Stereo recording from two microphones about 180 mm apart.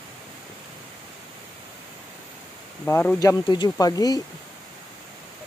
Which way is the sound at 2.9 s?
15° left (ahead or behind).